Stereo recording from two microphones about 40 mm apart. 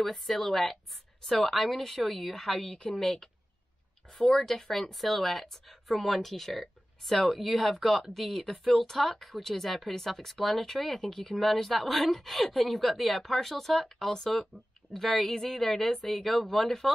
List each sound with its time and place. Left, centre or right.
0.0 s a woman's voice: centre